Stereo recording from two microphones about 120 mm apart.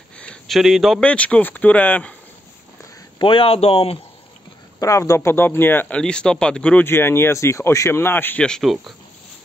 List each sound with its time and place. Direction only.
0.2 s a sound: 10° left (ahead or behind)
0.6 s speech: centre (ahead or behind)
1.0 s speech: 10° left (ahead or behind)
3.2 s speech: 45° left (ahead or behind)
4.7 s speech: 25° left (ahead or behind); by 8.9 s centre (ahead or behind)